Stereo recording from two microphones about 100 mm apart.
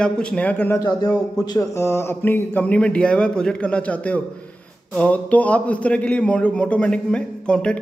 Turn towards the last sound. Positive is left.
turn(degrees=10)  # may be behind; listen again after turning